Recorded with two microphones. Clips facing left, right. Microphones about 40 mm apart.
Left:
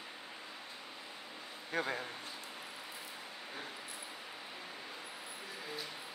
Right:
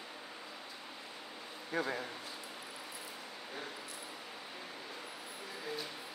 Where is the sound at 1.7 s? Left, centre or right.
Left.